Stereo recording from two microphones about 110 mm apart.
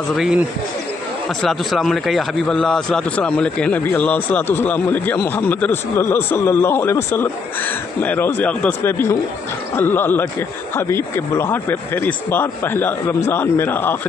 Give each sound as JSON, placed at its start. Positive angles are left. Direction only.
{"t": 0.1, "sound": "speech", "side_deg": -5}
{"t": 1.4, "sound": "a man's voice", "side_deg": 0}